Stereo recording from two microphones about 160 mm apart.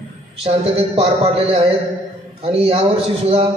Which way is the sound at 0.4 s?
40° right (ahead or behind).